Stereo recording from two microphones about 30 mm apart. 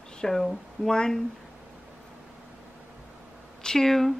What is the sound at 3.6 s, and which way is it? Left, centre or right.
Speech, centre.